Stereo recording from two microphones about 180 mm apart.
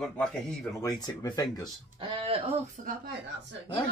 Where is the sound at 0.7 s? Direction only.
20° left (ahead or behind).